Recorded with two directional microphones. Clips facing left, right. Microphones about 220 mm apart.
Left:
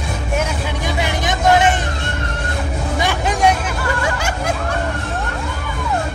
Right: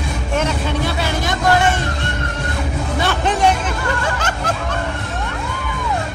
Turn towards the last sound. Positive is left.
turn(degrees=10)  # may be behind; listen again after turning